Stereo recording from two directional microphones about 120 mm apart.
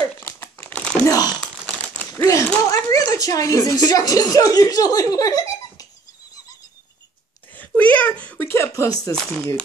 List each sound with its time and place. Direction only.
0.2 s crumpling: 20° left (ahead or behind)
1.0 s crumpling: 30° left (ahead or behind)
2.2 s speech: 25° left (ahead or behind)
7.5 s a sound: 15° left (ahead or behind)
9.1 s speech: 5° left (ahead or behind)